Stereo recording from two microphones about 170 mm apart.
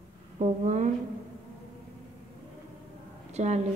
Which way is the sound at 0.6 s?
45° right (ahead or behind).